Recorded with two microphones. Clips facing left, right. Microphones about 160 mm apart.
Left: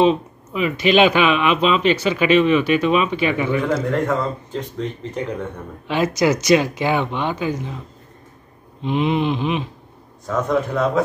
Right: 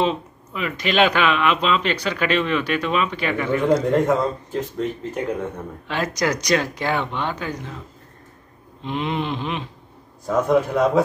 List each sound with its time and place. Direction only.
0.0 s speech: 20° left (ahead or behind)
3.6 s a man's voice: 15° right (ahead or behind)
4.6 s speech: 5° right (ahead or behind)
5.9 s speech: 10° left (ahead or behind)
8.8 s speech: 15° left (ahead or behind)
10.2 s a man's voice: 15° right (ahead or behind)